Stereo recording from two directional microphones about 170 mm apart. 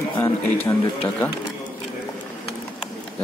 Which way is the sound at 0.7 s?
10° left (ahead or behind).